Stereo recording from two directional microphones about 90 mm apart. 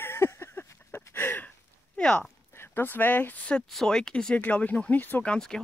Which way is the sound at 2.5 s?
25° left (ahead or behind).